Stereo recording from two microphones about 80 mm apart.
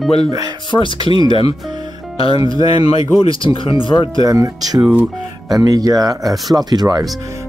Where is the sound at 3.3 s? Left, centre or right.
Left.